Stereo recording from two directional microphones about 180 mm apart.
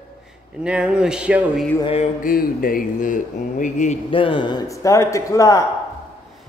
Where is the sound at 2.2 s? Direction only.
50° left (ahead or behind).